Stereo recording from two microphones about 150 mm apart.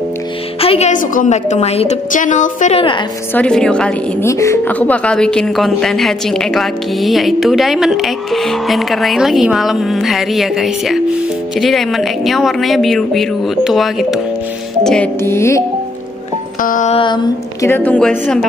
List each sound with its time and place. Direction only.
0.6 s a woman's voice: 40° left (ahead or behind)
3.3 s a woman's voice: 5° left (ahead or behind)
4.2 s speech: 20° left (ahead or behind); by 14.2 s centre (ahead or behind)
14.8 s music: 5° left (ahead or behind)
15.2 s a woman's voice: 20° left (ahead or behind)
16.6 s music: 60° left (ahead or behind)
16.9 s a sound: 35° left (ahead or behind)
17.6 s a woman's voice: 15° left (ahead or behind)